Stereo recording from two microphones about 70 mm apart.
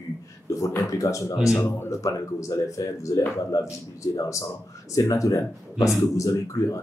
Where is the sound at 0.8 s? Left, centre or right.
Left.